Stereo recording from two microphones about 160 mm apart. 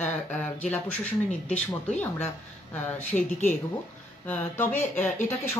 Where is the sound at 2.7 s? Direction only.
10° left (ahead or behind).